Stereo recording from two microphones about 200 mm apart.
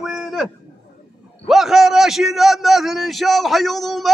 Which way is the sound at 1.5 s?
Centre (ahead or behind).